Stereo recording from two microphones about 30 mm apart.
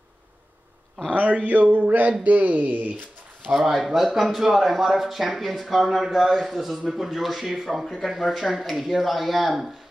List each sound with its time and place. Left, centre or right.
1.1 s speech: right
3.7 s speech: centre